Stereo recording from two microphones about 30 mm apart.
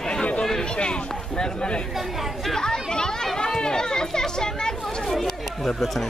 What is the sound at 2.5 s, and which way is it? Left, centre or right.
Speech, left.